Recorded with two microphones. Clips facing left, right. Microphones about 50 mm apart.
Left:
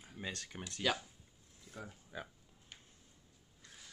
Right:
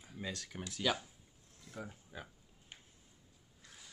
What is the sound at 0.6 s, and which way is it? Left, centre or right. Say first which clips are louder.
Speech: even; centre.